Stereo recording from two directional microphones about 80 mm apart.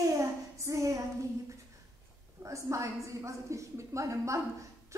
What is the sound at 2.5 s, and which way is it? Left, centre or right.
A woman's voice, right.